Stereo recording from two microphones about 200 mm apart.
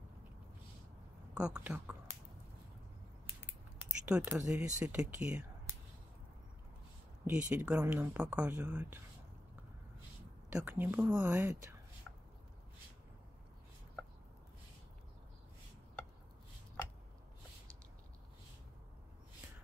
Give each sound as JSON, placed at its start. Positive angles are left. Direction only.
{"t": 1.3, "sound": "speech", "side_deg": -5}
{"t": 4.0, "sound": "speech", "side_deg": -10}
{"t": 7.2, "sound": "speech", "side_deg": -5}
{"t": 10.5, "sound": "speech", "side_deg": -10}